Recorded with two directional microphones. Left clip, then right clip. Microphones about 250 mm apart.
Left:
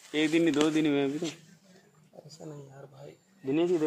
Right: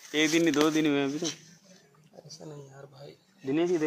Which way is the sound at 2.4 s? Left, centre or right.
Centre.